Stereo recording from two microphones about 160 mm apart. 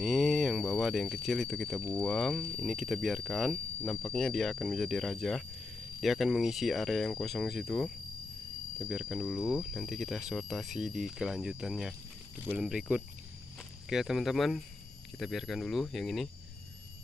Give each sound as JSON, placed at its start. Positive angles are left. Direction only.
{"t": 0.0, "sound": "speech", "side_deg": 0}